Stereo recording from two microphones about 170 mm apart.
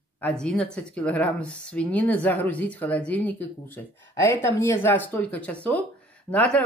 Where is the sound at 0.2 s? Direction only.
5° left (ahead or behind).